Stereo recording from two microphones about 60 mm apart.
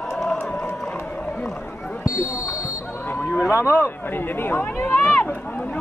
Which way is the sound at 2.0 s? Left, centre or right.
Left.